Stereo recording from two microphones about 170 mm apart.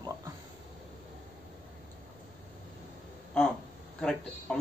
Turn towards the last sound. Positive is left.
turn(degrees=5)  # may be behind; listen again after turning